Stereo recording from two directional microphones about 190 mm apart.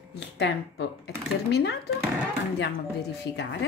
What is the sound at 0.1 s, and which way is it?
Speech, 60° left (ahead or behind).